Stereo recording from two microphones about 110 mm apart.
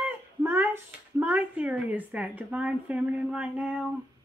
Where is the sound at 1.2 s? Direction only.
15° right (ahead or behind).